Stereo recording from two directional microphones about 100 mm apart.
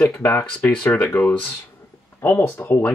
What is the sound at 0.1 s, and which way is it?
Speech, 15° left (ahead or behind).